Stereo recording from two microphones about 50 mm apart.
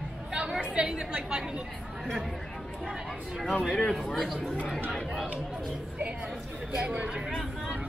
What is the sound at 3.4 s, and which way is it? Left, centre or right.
Speech, centre.